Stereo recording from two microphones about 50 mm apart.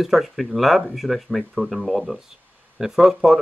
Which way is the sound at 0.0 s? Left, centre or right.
Centre.